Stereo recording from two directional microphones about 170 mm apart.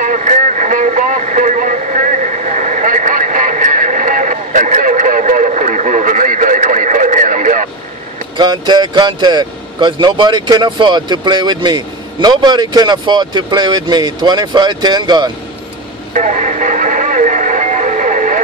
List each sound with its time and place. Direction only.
0.0 s vehicle: 45° right (ahead or behind)
8.4 s speech: 25° right (ahead or behind)
16.1 s music: 45° right (ahead or behind)